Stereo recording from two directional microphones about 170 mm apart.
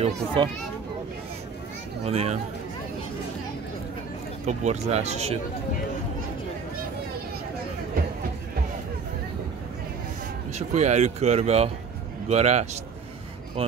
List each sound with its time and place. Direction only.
0.0 s a child's voice: 30° right (ahead or behind)
2.0 s speech: 35° right (ahead or behind)
4.5 s speech: 40° right (ahead or behind)
10.7 s speech: 40° right (ahead or behind)